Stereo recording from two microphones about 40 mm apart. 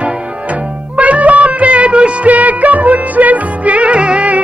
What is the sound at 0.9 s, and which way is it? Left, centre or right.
Music, right.